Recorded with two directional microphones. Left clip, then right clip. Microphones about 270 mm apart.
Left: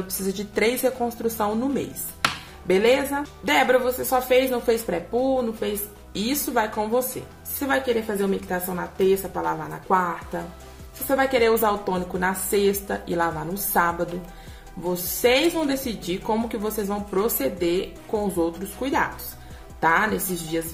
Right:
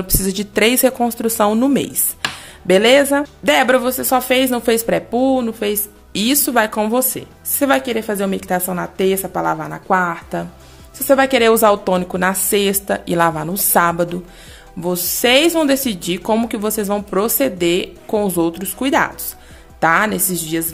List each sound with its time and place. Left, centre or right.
0.3 s speech: right